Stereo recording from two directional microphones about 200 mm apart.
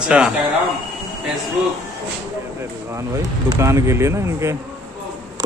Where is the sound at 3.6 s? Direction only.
15° right (ahead or behind).